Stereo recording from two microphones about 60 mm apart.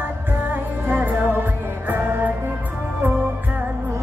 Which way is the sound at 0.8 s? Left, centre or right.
Right.